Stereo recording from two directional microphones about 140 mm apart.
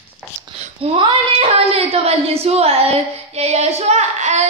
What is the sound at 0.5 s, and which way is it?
Speech, 50° right (ahead or behind).